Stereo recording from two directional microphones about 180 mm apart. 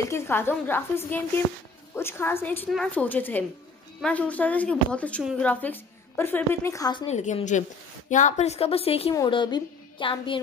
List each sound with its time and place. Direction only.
0.1 s a woman's voice: 10° left (ahead or behind)
7.1 s a woman's voice: 40° left (ahead or behind)
9.1 s a woman's voice: 25° left (ahead or behind)